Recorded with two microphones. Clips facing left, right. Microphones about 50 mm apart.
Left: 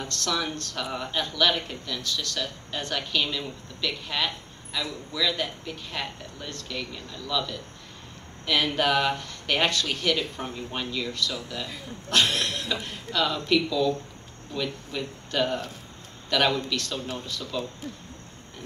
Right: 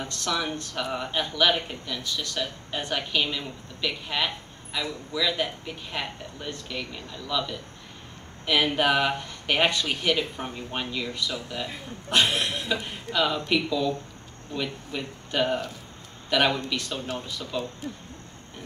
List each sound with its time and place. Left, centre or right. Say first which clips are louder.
0.0 s speech: even; centre